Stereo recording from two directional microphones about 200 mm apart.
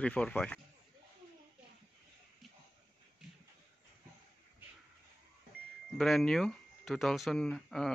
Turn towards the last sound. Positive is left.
turn(degrees=0)  # may be behind; listen again after turning